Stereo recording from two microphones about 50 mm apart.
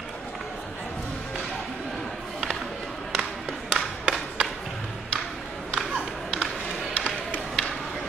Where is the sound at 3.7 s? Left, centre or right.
Centre.